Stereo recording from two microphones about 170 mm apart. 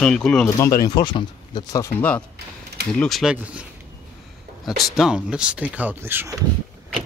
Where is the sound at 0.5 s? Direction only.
20° left (ahead or behind); by 3.6 s centre (ahead or behind).